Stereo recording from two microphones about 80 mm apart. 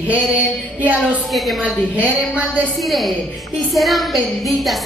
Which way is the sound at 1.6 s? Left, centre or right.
Centre.